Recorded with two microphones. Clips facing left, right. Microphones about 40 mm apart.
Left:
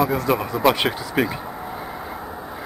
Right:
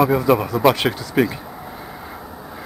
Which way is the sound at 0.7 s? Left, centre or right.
Centre.